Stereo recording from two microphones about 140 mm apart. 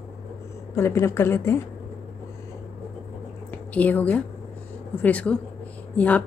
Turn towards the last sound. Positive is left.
turn(degrees=10)  # may be behind; listen again after turning